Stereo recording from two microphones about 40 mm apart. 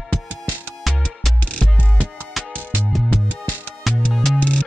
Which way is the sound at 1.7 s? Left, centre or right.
Right.